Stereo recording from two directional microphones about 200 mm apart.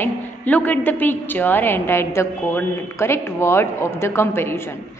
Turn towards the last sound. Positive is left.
turn(degrees=10)  # may be behind; listen again after turning